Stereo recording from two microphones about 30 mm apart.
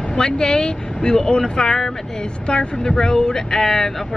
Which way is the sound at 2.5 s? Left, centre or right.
Left.